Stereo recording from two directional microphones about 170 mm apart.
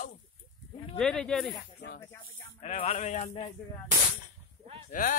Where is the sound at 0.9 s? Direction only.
5° left (ahead or behind).